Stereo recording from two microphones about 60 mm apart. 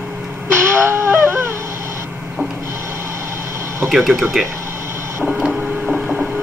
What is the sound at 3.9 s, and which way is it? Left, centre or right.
Speech, centre.